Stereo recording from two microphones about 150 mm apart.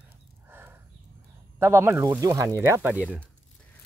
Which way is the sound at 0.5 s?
15° right (ahead or behind).